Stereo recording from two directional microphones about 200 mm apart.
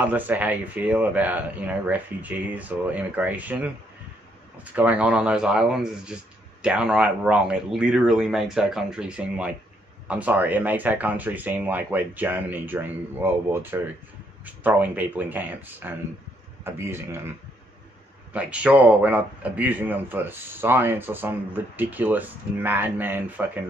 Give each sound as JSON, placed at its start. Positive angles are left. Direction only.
{"t": 0.0, "sound": "speech", "side_deg": -10}
{"t": 4.7, "sound": "speech", "side_deg": -5}
{"t": 18.3, "sound": "speech", "side_deg": -5}